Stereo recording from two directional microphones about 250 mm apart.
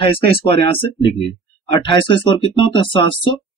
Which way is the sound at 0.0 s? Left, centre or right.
Left.